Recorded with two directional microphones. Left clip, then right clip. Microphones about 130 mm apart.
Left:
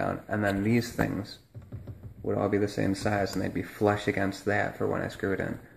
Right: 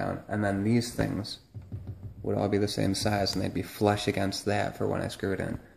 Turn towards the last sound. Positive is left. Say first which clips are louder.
# left 1 dB
turn(degrees=-15)  # may be behind; listen again after turning